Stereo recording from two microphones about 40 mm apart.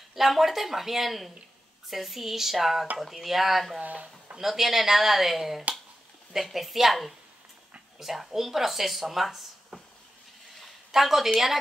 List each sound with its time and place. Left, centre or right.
0.1 s speech: centre
3.8 s speech: right
4.4 s speech: centre
10.9 s a woman's voice: centre